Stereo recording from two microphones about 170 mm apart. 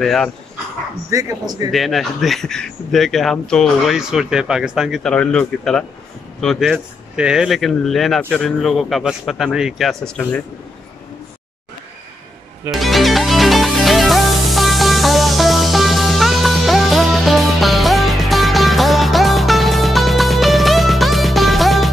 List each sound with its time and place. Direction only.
0.0 s speech: 5° left (ahead or behind)
1.1 s speech: 20° right (ahead or behind)
1.7 s speech: centre (ahead or behind)
12.7 s music: centre (ahead or behind)